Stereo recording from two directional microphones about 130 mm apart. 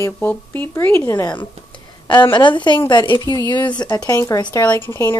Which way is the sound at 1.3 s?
35° left (ahead or behind).